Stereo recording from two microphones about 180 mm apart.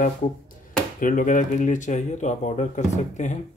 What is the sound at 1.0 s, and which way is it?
Speech, 45° left (ahead or behind).